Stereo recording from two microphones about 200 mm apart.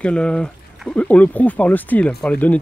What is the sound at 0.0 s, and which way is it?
Speech, 5° left (ahead or behind).